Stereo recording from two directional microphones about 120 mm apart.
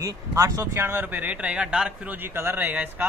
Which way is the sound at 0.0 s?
30° right (ahead or behind).